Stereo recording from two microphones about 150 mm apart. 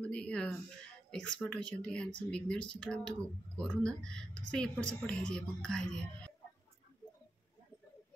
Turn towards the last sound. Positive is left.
turn(degrees=5)  # may be behind; listen again after turning